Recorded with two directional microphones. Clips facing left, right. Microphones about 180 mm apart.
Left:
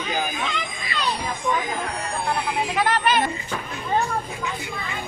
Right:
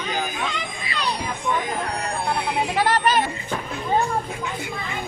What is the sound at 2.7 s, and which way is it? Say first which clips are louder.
Speech: right 1 dB; 35° right (ahead or behind).